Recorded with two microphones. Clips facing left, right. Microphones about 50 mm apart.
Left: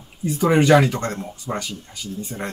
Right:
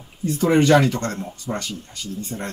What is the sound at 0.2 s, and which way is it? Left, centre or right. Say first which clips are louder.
Speech: even; centre.